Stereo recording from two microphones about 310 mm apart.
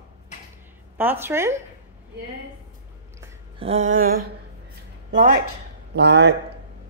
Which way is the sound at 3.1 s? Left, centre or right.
Centre.